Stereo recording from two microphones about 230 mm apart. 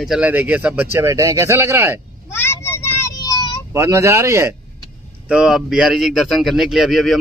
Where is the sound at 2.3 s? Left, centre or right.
Centre.